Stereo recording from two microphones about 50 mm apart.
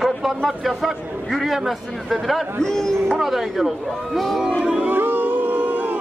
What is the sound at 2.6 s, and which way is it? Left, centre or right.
Speech, centre.